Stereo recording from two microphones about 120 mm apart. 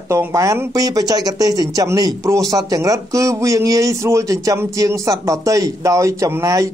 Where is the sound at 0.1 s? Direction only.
25° right (ahead or behind).